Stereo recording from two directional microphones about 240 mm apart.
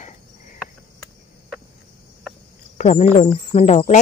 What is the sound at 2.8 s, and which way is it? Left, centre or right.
Speech, left.